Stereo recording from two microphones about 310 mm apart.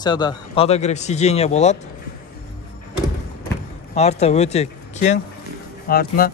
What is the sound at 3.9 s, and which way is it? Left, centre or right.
Speech, left.